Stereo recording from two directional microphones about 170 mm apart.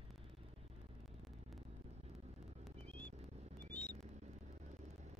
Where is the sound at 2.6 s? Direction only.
10° left (ahead or behind).